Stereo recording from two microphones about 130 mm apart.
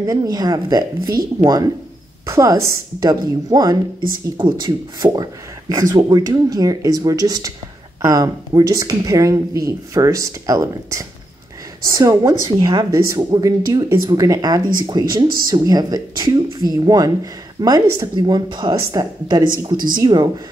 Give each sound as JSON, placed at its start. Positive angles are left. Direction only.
{"t": 0.0, "sound": "speech", "side_deg": -25}